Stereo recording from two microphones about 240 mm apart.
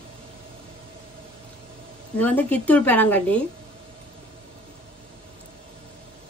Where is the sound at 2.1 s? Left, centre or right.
Centre.